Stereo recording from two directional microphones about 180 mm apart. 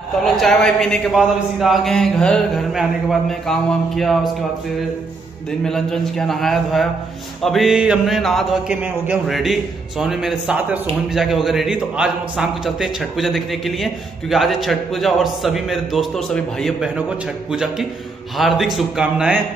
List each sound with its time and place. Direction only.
0.2 s a man's voice: centre (ahead or behind)
5.7 s a man's voice: centre (ahead or behind)